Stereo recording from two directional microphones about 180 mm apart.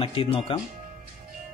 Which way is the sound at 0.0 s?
30° left (ahead or behind).